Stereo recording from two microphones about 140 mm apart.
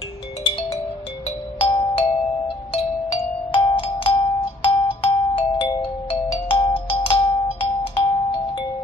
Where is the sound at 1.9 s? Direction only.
40° left (ahead or behind).